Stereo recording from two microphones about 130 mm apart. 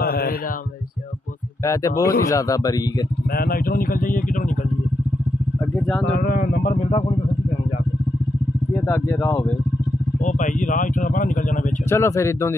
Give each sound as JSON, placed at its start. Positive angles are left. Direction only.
{"t": 1.6, "sound": "speech", "side_deg": 25}
{"t": 3.7, "sound": "speech", "side_deg": 90}
{"t": 6.2, "sound": "speech", "side_deg": 90}
{"t": 8.8, "sound": "speech", "side_deg": 20}
{"t": 10.2, "sound": "speech", "side_deg": 80}
{"t": 11.9, "sound": "speech", "side_deg": 20}